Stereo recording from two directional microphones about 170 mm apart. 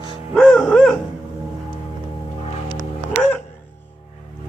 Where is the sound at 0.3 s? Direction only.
Centre (ahead or behind).